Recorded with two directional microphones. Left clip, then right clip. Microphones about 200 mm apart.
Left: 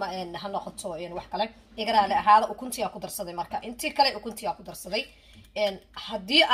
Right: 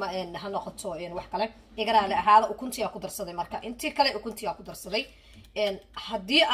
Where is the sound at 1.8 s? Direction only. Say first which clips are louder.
Left 1 dB; 35° left (ahead or behind).